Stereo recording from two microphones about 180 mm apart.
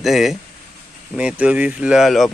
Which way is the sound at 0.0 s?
Centre (ahead or behind).